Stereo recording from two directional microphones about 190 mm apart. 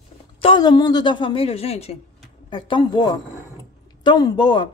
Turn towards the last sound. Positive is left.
turn(degrees=25)  # may be behind; listen again after turning